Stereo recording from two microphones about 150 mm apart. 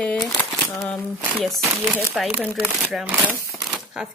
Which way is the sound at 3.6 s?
Centre (ahead or behind).